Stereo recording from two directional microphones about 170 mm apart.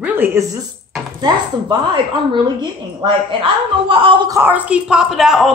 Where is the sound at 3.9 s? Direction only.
30° right (ahead or behind).